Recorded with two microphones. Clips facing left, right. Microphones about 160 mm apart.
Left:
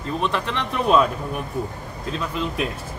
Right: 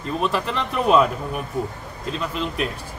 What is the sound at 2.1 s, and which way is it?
Speech, centre (ahead or behind).